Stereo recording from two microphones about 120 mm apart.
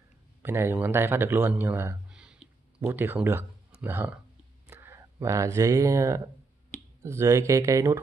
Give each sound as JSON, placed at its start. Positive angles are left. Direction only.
{"t": 0.4, "sound": "speech", "side_deg": -20}
{"t": 2.0, "sound": "a sound", "side_deg": -5}
{"t": 2.8, "sound": "speech", "side_deg": -20}